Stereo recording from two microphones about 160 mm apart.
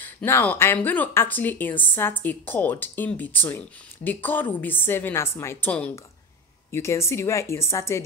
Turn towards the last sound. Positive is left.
turn(degrees=15)  # may be behind; listen again after turning